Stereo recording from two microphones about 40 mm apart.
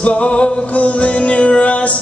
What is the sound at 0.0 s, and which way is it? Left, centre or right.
Male singing, left.